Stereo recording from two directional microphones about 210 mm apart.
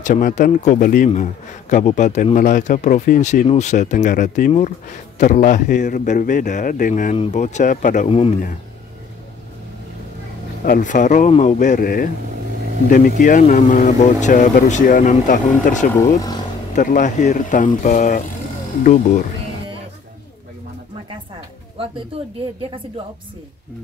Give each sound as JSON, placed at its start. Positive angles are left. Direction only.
{"t": 0.0, "sound": "a man's voice", "side_deg": 40}
{"t": 10.6, "sound": "a man's voice", "side_deg": 40}